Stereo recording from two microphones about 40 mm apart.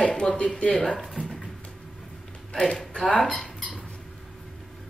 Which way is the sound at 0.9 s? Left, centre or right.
Centre.